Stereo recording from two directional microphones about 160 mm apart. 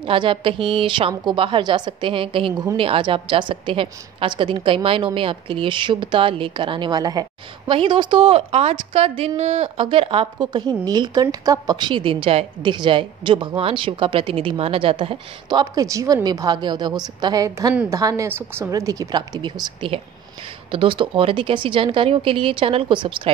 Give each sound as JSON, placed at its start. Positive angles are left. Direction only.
{"t": 0.0, "sound": "a woman's voice", "side_deg": -35}
{"t": 15.6, "sound": "a woman's voice", "side_deg": -20}